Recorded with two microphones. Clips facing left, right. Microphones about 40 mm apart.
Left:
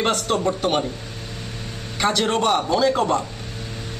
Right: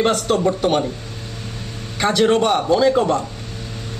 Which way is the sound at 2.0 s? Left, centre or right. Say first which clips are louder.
Right 4 dB; centre.